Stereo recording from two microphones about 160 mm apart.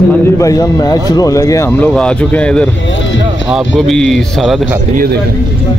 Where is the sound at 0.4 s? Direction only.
20° left (ahead or behind).